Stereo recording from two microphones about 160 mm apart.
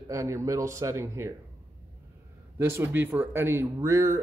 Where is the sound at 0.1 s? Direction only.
20° right (ahead or behind).